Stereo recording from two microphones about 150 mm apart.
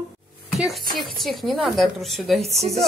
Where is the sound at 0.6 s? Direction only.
Centre (ahead or behind).